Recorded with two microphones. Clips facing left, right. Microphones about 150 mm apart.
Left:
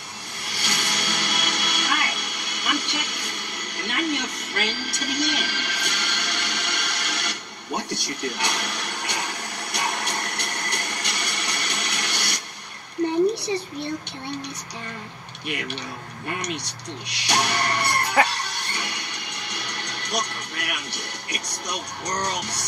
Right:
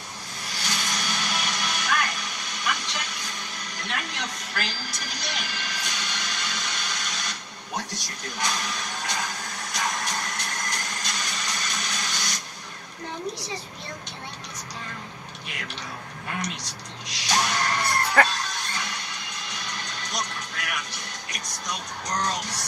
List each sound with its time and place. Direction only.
0.5 s music: 65° left (ahead or behind)
16.3 s speech: 65° left (ahead or behind)
18.2 s music: 65° left (ahead or behind)